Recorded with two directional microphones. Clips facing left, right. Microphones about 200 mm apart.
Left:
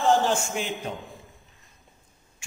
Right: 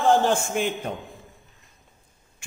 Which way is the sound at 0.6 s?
55° right (ahead or behind).